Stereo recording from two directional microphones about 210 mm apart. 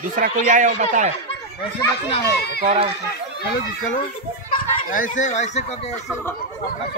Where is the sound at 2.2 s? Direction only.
50° left (ahead or behind).